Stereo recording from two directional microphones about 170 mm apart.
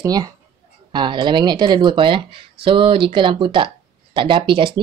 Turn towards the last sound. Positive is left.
turn(degrees=-30)  # may be behind; listen again after turning